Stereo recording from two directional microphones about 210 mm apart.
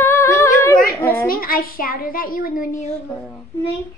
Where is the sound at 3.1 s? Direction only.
Centre (ahead or behind).